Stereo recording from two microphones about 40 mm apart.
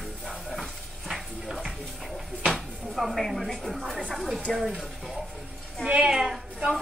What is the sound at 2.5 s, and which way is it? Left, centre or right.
A woman's voice, centre.